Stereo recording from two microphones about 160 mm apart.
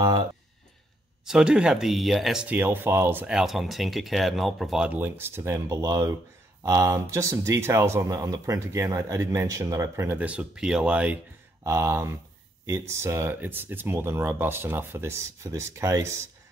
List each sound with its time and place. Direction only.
1.2 s speech: 5° right (ahead or behind)